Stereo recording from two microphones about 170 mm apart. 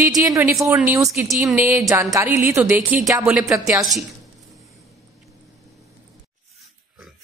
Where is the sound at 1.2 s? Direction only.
Centre (ahead or behind).